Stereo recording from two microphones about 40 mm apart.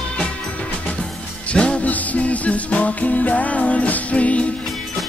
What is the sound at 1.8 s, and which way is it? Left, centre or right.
Music, left.